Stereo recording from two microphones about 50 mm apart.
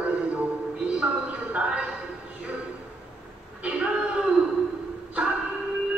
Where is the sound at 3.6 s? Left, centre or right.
Centre.